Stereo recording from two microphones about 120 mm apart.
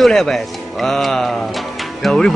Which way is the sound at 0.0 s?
Centre (ahead or behind).